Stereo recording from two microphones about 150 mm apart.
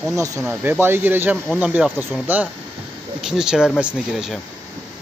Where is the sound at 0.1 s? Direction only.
20° right (ahead or behind); by 4.4 s 5° right (ahead or behind).